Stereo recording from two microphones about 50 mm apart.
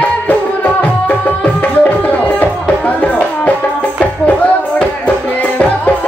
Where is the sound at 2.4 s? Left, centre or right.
Left.